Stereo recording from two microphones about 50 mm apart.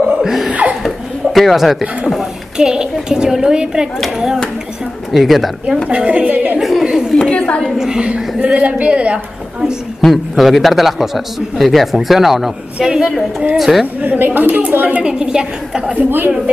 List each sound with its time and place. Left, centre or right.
0.2 s laughter: centre
0.5 s speech: right
0.8 s a sound: centre
2.5 s a child's voice: centre
5.9 s a woman's voice: right
6.8 s chatter: centre
7.2 s a sound: centre
7.7 s a woman's voice: centre
8.1 s speech: right
10.0 s a man's voice: centre
12.7 s a woman's voice: centre
14.0 s speech: right
15.0 s a woman's voice: centre
16.0 s speech: right